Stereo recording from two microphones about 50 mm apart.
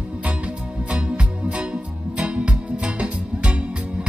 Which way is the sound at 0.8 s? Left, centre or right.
Centre.